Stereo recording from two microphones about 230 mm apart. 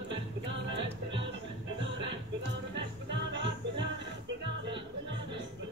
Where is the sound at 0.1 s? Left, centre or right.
Right.